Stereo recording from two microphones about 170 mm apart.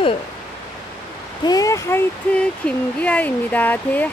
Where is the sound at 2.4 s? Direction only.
10° left (ahead or behind).